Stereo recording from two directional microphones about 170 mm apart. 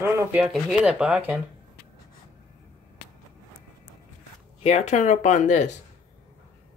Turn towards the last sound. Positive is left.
turn(degrees=45)  # may be behind; listen again after turning